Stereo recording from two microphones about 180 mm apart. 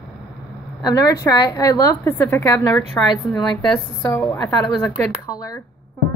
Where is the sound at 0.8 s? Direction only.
20° left (ahead or behind).